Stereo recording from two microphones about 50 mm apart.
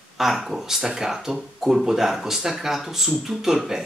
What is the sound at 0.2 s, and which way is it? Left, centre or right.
Speech, centre.